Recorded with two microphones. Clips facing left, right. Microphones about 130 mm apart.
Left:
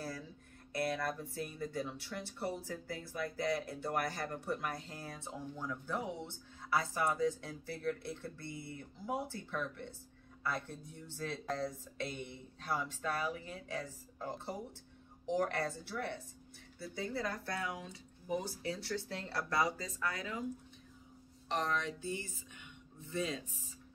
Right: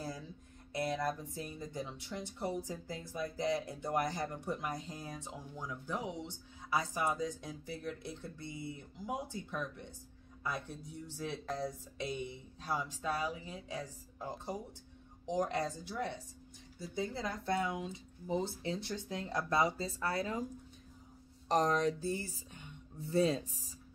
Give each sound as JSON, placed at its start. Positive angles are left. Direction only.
{"t": 0.7, "sound": "speech", "side_deg": -20}
{"t": 11.1, "sound": "speech", "side_deg": -15}
{"t": 15.2, "sound": "speech", "side_deg": -15}
{"t": 21.5, "sound": "speech", "side_deg": -40}